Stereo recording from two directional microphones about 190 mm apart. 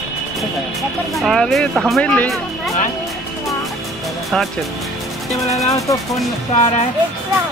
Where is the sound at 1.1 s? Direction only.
Centre (ahead or behind).